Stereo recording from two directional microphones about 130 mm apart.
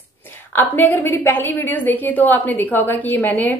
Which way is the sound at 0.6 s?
15° left (ahead or behind).